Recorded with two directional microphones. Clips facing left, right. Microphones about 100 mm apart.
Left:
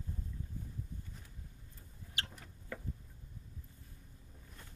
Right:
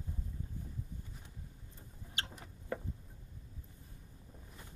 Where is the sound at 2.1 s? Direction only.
25° right (ahead or behind).